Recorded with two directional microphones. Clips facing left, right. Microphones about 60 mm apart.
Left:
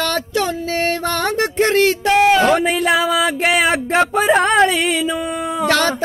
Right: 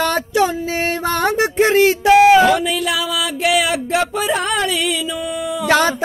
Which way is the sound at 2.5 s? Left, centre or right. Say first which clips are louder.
Left 2 dB; left.